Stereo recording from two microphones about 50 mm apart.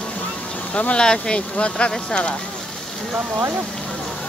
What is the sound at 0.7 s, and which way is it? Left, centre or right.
Speech, left.